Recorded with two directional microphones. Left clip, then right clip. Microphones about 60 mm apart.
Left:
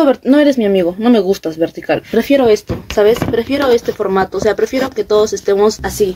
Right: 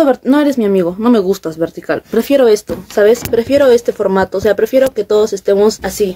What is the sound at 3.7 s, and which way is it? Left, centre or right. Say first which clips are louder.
Speech: right 2 dB; right.